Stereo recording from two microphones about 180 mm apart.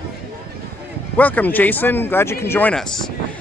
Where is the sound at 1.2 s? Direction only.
10° left (ahead or behind).